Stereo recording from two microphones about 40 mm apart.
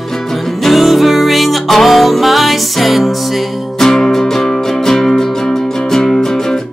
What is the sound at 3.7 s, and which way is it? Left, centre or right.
Music, centre.